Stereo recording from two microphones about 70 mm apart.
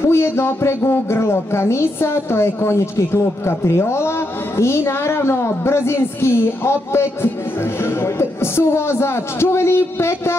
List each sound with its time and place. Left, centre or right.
0.0 s speech: left